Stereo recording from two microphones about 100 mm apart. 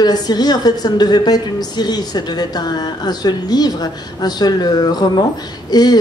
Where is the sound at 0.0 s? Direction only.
40° left (ahead or behind).